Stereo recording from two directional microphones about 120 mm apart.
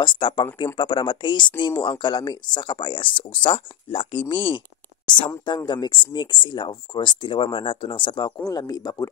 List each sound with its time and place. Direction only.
0.0 s speech: 40° left (ahead or behind)
8.5 s speech: 30° left (ahead or behind)